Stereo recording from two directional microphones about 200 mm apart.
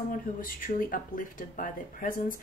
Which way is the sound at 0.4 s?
45° left (ahead or behind).